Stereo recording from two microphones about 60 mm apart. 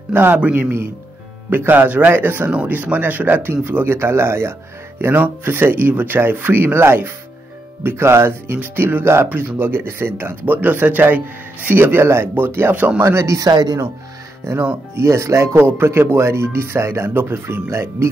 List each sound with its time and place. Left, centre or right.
0.1 s speech: right
9.3 s speech: right
12.7 s speech: right
13.0 s speech: right
14.4 s speech: right
15.5 s speech: right